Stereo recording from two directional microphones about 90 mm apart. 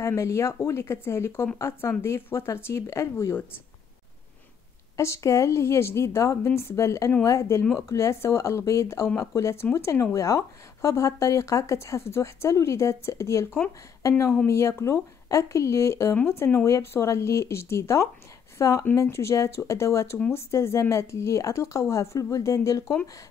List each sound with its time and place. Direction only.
0.0 s speech: 35° left (ahead or behind)
4.9 s speech: 35° left (ahead or behind)